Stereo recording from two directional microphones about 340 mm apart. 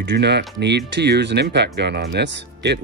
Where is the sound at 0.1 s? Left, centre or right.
Right.